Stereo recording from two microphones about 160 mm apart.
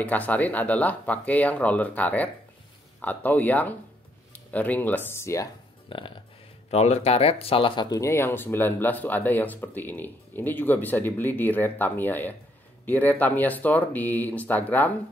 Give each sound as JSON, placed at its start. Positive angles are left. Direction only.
{"t": 0.0, "sound": "speech", "side_deg": 10}
{"t": 5.9, "sound": "music", "side_deg": 30}
{"t": 6.7, "sound": "speech", "side_deg": 40}